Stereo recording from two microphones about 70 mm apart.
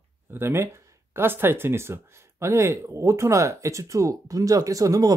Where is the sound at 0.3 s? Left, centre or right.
Right.